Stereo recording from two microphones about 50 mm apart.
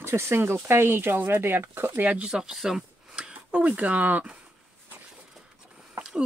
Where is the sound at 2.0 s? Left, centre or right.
Right.